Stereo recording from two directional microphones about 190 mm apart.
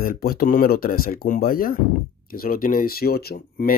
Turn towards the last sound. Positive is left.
turn(degrees=50)  # may be behind; listen again after turning